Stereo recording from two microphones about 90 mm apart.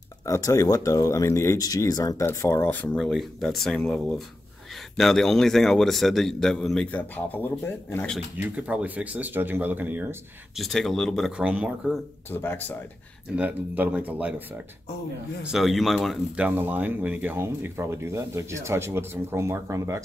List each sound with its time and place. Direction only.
0.2 s speech: 35° left (ahead or behind)
2.2 s speech: 30° left (ahead or behind)
3.0 s a man's voice: centre (ahead or behind)
6.9 s speech: 20° left (ahead or behind)
8.4 s speech: 15° right (ahead or behind)
10.5 s a man's voice: centre (ahead or behind)
11.3 s speech: 15° right (ahead or behind)
12.3 s speech: 25° left (ahead or behind)
13.4 s speech: 20° right (ahead or behind)
15.4 s a man's voice: centre (ahead or behind)
16.3 s speech: 20° right (ahead or behind)